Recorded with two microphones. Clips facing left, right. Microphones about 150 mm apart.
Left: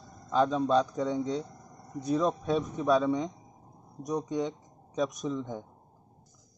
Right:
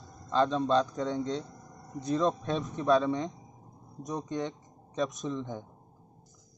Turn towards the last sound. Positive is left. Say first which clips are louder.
# left 1 dB
turn(degrees=10)  # may be behind; listen again after turning